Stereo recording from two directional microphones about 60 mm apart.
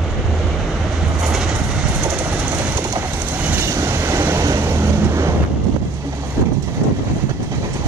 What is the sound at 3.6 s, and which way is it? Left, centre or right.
Train, right.